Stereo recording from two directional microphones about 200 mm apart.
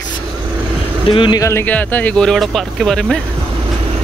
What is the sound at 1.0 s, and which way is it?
Speech, 25° left (ahead or behind).